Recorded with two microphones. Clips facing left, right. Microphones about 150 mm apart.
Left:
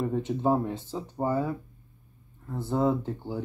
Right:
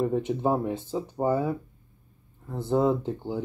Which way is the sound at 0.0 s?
15° right (ahead or behind).